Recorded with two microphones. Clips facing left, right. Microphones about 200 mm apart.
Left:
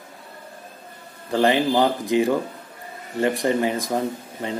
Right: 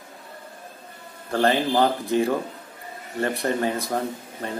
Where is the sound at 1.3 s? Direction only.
15° left (ahead or behind).